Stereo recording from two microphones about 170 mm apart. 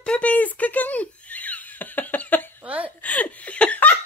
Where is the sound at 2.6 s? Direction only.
10° right (ahead or behind).